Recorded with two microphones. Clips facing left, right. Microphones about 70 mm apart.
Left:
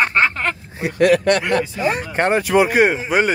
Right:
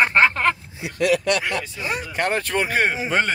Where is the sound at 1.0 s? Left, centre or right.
Left.